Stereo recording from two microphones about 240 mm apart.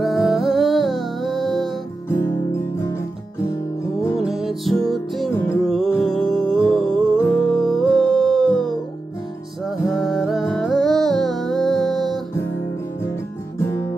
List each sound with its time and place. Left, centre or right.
0.0 s music: centre
4.2 s music: centre
9.9 s music: centre